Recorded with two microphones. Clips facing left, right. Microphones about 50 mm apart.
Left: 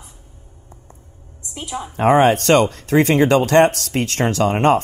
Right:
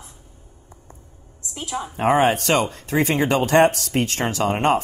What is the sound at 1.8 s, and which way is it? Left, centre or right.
Speech, left.